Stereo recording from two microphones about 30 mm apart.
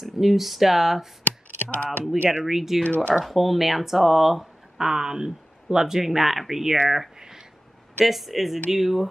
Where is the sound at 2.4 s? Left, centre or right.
Centre.